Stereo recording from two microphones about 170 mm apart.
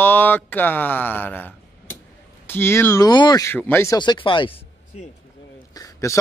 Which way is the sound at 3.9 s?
25° left (ahead or behind).